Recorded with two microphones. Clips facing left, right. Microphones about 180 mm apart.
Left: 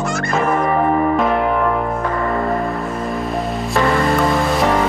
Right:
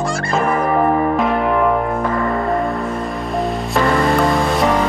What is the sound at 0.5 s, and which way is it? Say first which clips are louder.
Music: right 1 dB; centre (ahead or behind).